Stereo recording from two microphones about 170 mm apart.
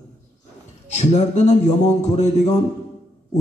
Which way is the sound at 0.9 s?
45° left (ahead or behind).